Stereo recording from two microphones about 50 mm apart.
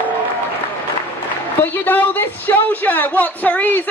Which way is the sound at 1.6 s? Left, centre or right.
Left.